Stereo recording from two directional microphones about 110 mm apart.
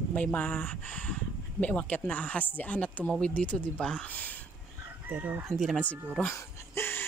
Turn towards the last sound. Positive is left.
turn(degrees=20)  # may be behind; listen again after turning